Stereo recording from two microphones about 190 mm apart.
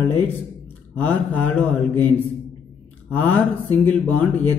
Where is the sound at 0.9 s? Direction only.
10° left (ahead or behind).